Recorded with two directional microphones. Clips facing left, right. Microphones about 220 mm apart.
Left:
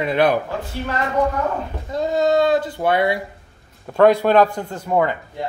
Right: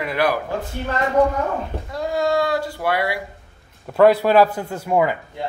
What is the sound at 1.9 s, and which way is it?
Speech, 20° left (ahead or behind).